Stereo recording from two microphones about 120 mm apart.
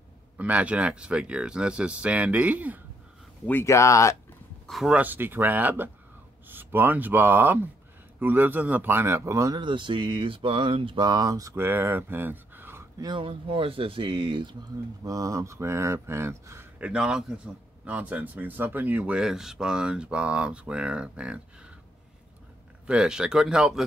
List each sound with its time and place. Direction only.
0.4 s speech: 10° right (ahead or behind)
3.4 s speech: 20° left (ahead or behind)
4.6 s speech: centre (ahead or behind)
4.9 s speech: 15° right (ahead or behind)
9.6 s speech: 40° right (ahead or behind); by 12.8 s 15° right (ahead or behind)
13.0 s speech: 45° right (ahead or behind)
15.0 s speech: 30° right (ahead or behind)
16.8 s speech: 5° right (ahead or behind)
22.8 s speech: 5° right (ahead or behind)